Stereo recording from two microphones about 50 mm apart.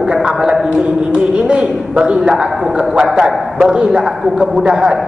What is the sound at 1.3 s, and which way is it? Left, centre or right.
A man's voice, right.